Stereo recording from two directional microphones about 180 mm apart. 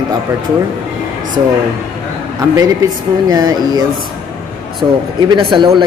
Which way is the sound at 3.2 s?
20° right (ahead or behind).